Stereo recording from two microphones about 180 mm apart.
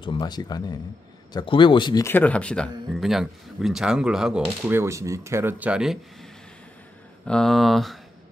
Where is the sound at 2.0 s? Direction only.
10° left (ahead or behind).